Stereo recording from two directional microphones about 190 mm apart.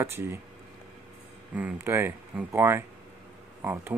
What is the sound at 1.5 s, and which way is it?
Speech, 10° right (ahead or behind).